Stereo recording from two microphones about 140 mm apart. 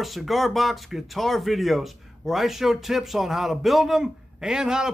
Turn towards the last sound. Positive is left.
turn(degrees=-5)  # may be behind; listen again after turning